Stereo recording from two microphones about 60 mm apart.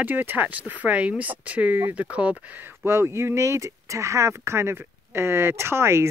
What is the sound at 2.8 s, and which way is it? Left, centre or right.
Speech, right.